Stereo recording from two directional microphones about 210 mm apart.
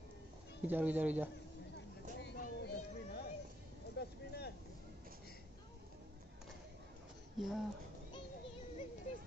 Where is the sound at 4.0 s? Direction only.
50° left (ahead or behind).